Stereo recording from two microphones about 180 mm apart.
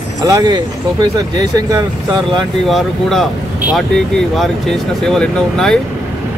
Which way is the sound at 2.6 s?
Centre (ahead or behind).